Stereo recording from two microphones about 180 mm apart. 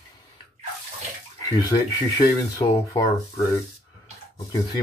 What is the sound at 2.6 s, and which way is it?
Speech, 25° left (ahead or behind).